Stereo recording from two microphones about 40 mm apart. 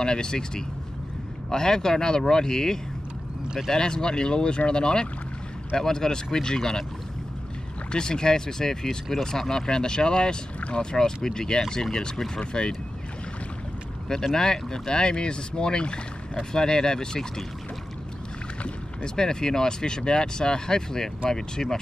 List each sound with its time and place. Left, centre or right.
0.0 s speech: left
7.9 s speech: centre
14.0 s speech: centre
19.1 s speech: centre